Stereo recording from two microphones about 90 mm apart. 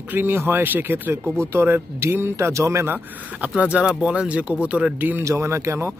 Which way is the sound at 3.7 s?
15° right (ahead or behind).